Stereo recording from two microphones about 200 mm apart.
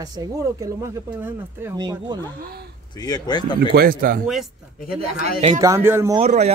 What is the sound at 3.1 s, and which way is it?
Speech, 20° left (ahead or behind).